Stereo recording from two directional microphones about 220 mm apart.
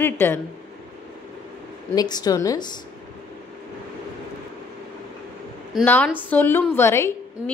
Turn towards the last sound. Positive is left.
turn(degrees=10)  # may be behind; listen again after turning